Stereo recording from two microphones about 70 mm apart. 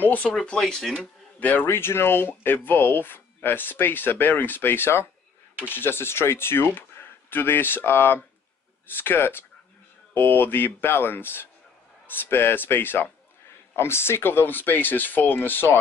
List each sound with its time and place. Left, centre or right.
0.0 s speech: left
0.5 s speech: centre
1.4 s speech: left